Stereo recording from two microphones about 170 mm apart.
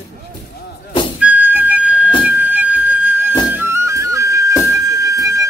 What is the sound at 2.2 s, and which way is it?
Music, 10° right (ahead or behind).